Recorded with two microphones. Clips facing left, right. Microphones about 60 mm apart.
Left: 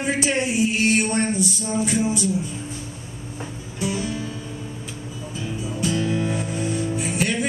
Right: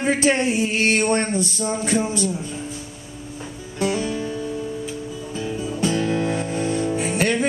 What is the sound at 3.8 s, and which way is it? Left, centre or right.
Music, right.